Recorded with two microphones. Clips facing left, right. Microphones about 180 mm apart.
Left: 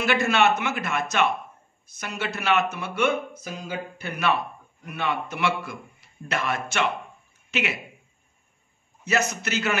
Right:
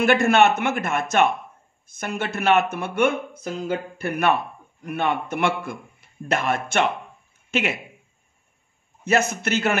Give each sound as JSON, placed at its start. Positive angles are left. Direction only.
{"t": 0.0, "sound": "a man's voice", "side_deg": -50}
{"t": 9.0, "sound": "speech", "side_deg": -50}